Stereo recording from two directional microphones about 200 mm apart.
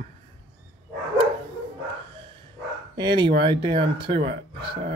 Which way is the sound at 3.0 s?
25° right (ahead or behind).